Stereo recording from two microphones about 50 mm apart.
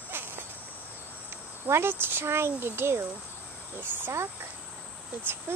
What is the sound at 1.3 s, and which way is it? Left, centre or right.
A child's voice, right.